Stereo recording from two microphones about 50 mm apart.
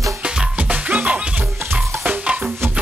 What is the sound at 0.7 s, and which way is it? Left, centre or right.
Music, right.